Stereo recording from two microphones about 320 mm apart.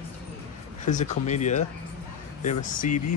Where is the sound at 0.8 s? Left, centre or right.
Left.